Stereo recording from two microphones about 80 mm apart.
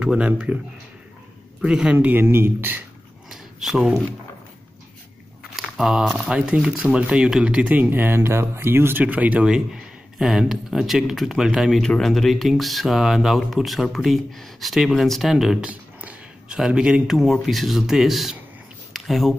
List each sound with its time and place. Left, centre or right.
0.0 s speech: centre
1.6 s speech: centre; by 2.8 s right
3.3 s a sound: centre
5.6 s speech: centre
10.1 s speech: centre
11.8 s speech: centre
15.6 s a sound: centre
16.5 s speech: centre